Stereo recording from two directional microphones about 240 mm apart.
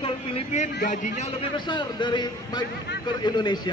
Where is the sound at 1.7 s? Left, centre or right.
Centre.